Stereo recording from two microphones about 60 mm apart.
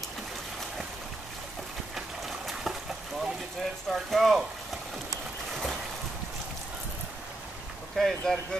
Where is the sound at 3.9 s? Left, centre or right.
Centre.